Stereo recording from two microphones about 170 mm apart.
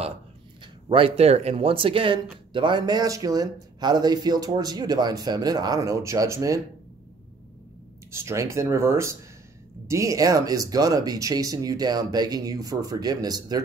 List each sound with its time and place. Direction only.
0.8 s speech: 30° right (ahead or behind); by 6.6 s 15° right (ahead or behind)
8.1 s speech: 15° right (ahead or behind)